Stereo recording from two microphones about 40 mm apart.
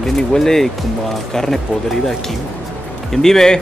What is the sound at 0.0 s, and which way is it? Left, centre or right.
Speech, centre.